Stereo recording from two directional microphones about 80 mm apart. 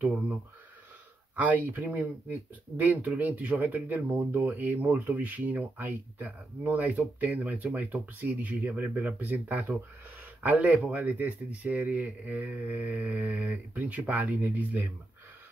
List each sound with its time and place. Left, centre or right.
1.3 s speech: right